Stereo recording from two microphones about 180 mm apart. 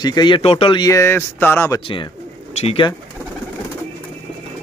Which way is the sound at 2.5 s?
35° left (ahead or behind).